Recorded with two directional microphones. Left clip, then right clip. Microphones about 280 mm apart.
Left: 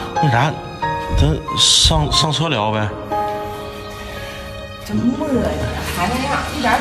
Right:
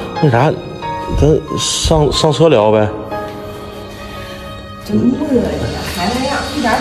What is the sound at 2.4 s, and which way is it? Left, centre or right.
Speech, left.